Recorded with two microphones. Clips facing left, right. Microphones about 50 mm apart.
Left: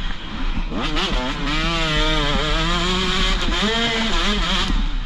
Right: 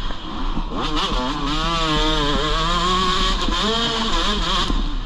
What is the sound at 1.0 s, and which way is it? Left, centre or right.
Vehicle, centre.